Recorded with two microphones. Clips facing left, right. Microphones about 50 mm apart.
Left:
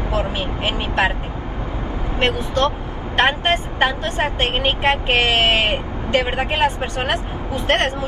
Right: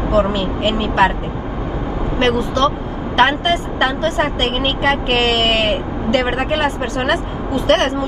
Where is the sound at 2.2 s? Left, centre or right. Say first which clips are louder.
Right 3 dB; left.